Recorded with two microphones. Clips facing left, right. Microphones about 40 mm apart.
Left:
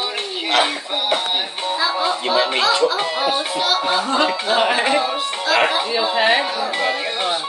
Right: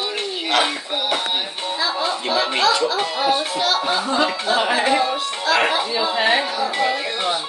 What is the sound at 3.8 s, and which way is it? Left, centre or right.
Speech, left.